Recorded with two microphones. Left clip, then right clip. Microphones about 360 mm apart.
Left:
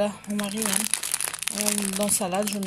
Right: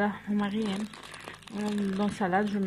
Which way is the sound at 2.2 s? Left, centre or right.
Centre.